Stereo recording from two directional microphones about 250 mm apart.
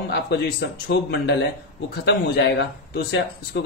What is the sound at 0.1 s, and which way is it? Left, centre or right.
A man's voice, left.